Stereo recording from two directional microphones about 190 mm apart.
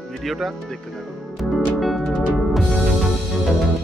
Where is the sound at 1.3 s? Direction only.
Centre (ahead or behind).